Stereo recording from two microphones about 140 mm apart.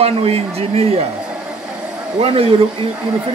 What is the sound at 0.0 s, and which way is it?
Speech, 45° right (ahead or behind).